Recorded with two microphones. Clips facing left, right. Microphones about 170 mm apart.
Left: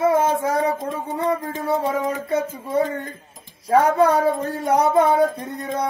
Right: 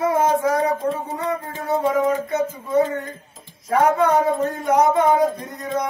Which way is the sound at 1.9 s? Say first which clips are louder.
Right 3 dB; 30° left (ahead or behind).